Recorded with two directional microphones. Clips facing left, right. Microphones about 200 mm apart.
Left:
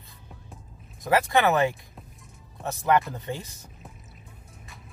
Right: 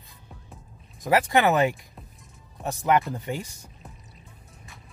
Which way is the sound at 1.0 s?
15° right (ahead or behind).